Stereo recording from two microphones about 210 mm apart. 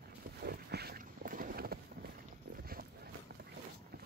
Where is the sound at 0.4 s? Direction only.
50° right (ahead or behind).